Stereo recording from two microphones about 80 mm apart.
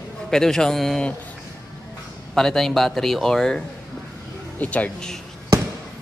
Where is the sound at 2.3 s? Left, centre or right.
Centre.